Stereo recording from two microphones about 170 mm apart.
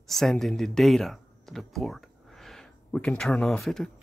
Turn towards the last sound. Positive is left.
turn(degrees=0)  # may be behind; listen again after turning